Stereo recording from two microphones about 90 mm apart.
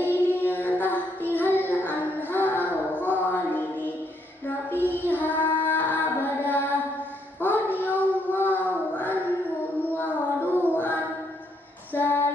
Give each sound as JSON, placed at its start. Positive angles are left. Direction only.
{"t": 0.0, "sound": "child singing", "side_deg": 20}
{"t": 10.5, "sound": "music", "side_deg": 20}
{"t": 11.9, "sound": "female singing", "side_deg": 25}